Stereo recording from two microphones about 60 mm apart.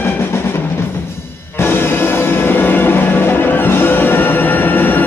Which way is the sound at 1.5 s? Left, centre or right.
Left.